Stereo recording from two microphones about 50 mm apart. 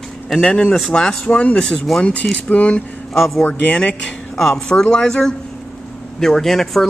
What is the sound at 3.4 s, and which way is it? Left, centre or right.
Speech, left.